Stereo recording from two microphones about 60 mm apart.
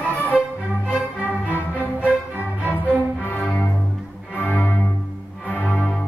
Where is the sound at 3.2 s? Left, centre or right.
Left.